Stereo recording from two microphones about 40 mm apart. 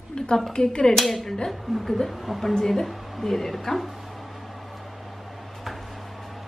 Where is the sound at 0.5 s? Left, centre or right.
Centre.